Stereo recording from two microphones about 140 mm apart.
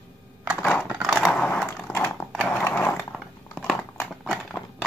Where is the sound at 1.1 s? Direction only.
5° left (ahead or behind).